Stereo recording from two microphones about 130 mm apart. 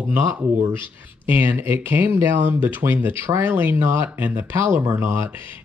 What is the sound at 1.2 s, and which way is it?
Speech, 15° right (ahead or behind).